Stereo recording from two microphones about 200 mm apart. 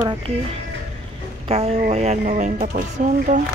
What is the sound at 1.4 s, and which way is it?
Speech, 30° right (ahead or behind).